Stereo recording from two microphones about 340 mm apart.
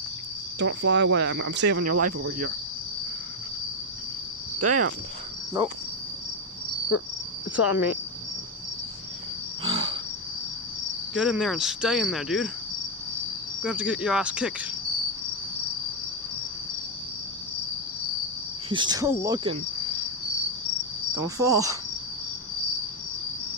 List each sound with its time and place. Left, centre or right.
0.6 s speech: right
4.6 s cricket: right
7.5 s cricket: centre
9.6 s insect: centre
11.1 s cricket: centre
13.6 s cricket: centre
18.7 s cricket: centre
21.4 s cricket: centre